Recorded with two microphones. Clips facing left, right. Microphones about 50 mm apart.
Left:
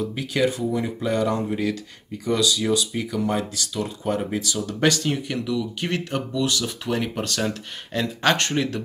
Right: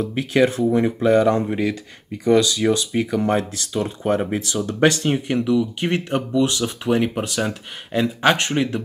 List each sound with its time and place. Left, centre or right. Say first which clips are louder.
0.0 s speech: right 5 dB; right